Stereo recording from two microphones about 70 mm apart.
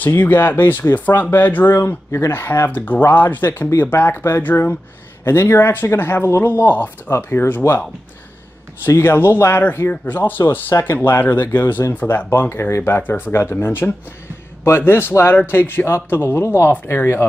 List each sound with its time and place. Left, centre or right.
0.0 s speech: left
6.4 s speech: left
9.0 s speech: left
12.3 s speech: left
13.0 s speech: left
13.3 s speech: left